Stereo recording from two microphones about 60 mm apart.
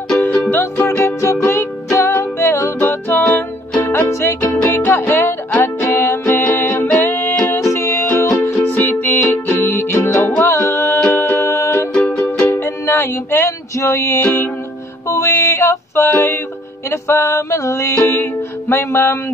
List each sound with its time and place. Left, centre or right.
0.1 s music: left
1.5 s music: left
2.8 s music: left
3.8 s music: left
4.6 s music: left
7.4 s music: left
8.4 s music: left
12.3 s music: left
14.2 s music: left
15.0 s music: left
16.1 s music: left
16.9 s music: left
18.0 s music: left